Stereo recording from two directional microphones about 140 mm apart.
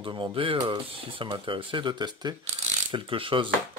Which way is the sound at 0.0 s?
35° right (ahead or behind).